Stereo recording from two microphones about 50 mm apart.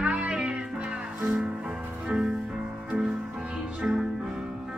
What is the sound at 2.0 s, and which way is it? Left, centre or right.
Music, centre.